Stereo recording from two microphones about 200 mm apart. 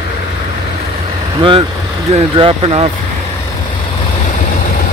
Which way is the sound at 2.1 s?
30° right (ahead or behind).